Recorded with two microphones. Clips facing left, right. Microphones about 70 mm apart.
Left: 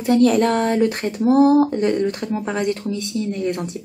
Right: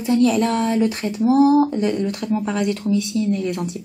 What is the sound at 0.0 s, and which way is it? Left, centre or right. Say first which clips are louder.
Speech: left 2 dB; left.